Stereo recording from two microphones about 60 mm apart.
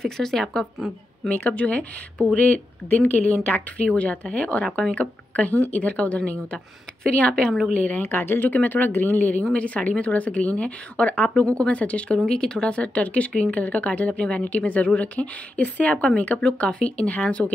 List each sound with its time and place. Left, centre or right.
0.0 s speech: centre
1.3 s a woman's voice: left
8.0 s speech: left
9.4 s a woman's voice: centre